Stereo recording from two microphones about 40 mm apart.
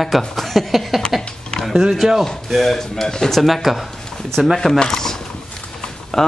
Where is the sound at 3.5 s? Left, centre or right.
Centre.